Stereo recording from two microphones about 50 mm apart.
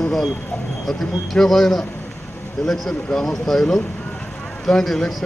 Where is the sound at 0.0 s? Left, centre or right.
Centre.